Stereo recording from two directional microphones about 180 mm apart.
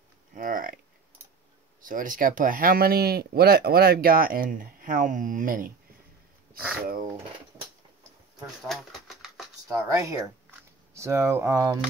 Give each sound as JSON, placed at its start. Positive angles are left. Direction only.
{"t": 0.4, "sound": "speech", "side_deg": -50}
{"t": 1.8, "sound": "speech", "side_deg": -50}
{"t": 8.6, "sound": "typewriter", "side_deg": 0}
{"t": 9.7, "sound": "speech", "side_deg": -15}